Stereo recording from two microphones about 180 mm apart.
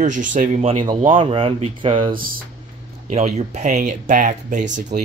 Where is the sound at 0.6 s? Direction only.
25° right (ahead or behind).